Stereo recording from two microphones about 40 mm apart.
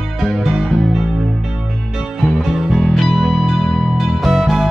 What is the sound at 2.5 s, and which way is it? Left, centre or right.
Music, centre.